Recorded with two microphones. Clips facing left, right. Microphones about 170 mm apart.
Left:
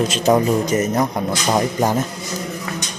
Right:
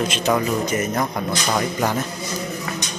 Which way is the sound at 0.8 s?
20° left (ahead or behind).